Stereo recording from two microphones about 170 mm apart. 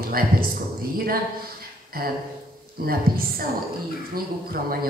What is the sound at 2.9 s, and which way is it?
Speech, 60° right (ahead or behind).